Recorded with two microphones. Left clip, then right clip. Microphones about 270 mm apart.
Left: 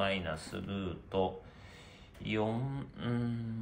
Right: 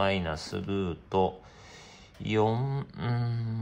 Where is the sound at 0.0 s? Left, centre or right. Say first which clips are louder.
Right 6 dB; right.